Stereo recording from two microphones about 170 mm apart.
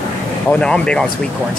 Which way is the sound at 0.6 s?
5° left (ahead or behind).